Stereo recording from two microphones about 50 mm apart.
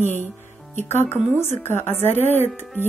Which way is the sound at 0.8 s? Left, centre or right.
Left.